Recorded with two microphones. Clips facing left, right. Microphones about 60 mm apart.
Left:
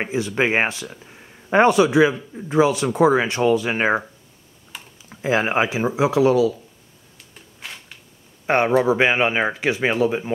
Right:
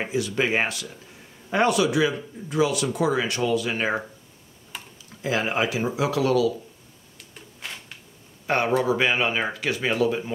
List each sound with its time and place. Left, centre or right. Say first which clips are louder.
0.0 s speech: left 3 dB; left
5.1 s speech: left 5 dB; left
7.6 s a sound: left 1 dB; centre
8.5 s speech: left 5 dB; left